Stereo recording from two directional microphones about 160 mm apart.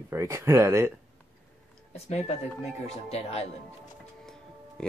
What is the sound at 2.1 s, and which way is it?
Speech, 45° left (ahead or behind).